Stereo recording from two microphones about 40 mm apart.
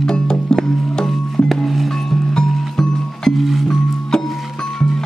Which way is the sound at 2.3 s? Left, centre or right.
Centre.